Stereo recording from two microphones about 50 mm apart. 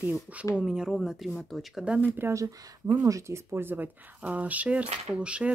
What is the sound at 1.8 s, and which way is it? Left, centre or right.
Speech, right.